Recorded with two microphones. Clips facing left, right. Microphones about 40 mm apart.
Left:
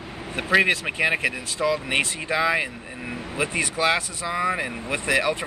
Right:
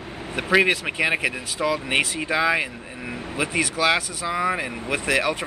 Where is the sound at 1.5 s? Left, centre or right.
Right.